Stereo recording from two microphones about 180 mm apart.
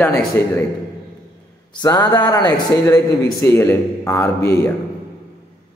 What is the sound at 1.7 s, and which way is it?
Speech, 20° left (ahead or behind).